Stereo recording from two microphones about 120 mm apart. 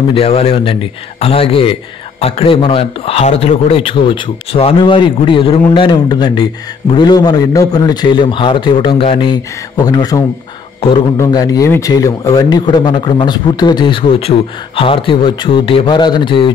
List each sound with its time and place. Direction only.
0.1 s a man's voice: 55° left (ahead or behind); by 10.2 s 30° left (ahead or behind)
11.2 s a man's voice: 30° left (ahead or behind)